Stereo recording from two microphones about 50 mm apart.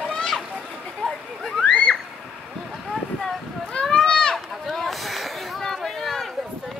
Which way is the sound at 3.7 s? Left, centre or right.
Centre.